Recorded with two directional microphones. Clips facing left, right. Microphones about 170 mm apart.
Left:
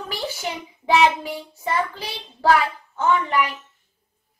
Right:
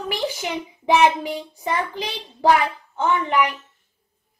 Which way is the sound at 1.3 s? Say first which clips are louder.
Even; 15° right (ahead or behind).